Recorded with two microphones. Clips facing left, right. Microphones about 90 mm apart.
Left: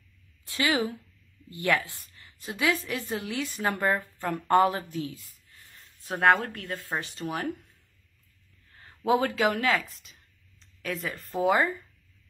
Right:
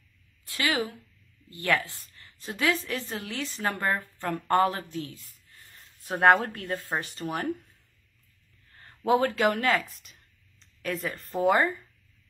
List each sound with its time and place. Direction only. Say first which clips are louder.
0.5 s a woman's voice: left 2 dB; 20° left (ahead or behind); by 7.7 s centre (ahead or behind)
8.7 s speech: right 1 dB; 5° left (ahead or behind)